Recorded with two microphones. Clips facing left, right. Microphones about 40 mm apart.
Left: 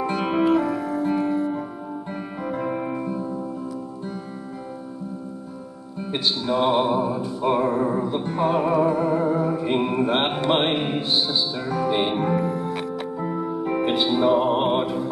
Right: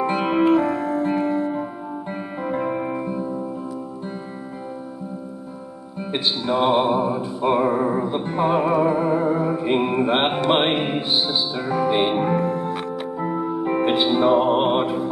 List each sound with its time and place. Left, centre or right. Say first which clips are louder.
0.0 s music: right 3 dB; centre
5.9 s music: right 1 dB; centre